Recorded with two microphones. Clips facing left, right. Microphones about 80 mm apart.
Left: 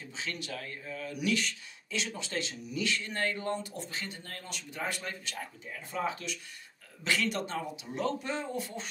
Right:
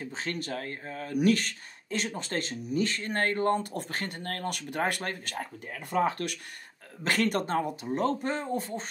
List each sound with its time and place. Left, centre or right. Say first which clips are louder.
0.0 s speech: right 5 dB; right
7.0 s speech: right 4 dB; right